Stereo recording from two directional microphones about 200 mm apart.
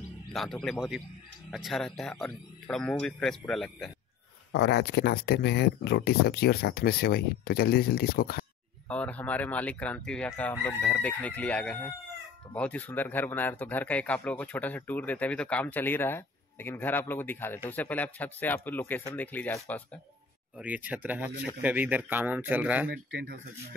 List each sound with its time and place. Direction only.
0.3 s speech: centre (ahead or behind)
4.5 s speech: 55° left (ahead or behind)
8.8 s a man's voice: 5° left (ahead or behind)
20.5 s speech: 10° right (ahead or behind)
22.8 s speech: 60° right (ahead or behind)